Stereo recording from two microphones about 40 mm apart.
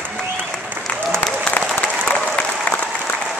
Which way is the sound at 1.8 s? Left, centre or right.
Left.